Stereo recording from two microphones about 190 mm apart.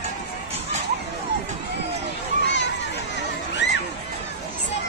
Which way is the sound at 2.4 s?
70° left (ahead or behind).